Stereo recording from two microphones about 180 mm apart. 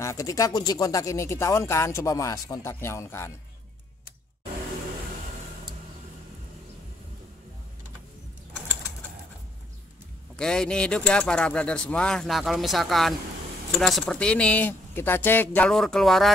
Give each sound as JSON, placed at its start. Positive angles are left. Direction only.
{"t": 0.0, "sound": "speech", "side_deg": 15}
{"t": 10.3, "sound": "speech", "side_deg": 5}